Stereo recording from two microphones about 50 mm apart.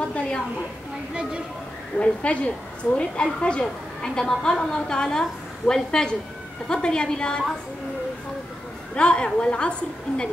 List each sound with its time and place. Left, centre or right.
2.0 s a woman's voice: left
8.9 s a woman's voice: left